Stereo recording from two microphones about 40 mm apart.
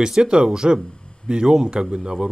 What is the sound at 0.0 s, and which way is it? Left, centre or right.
A man's voice, right.